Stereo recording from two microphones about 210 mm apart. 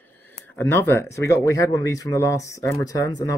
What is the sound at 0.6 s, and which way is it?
Speech, 10° left (ahead or behind).